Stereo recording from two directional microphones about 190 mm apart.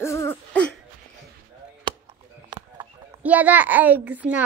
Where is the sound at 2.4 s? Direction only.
25° right (ahead or behind).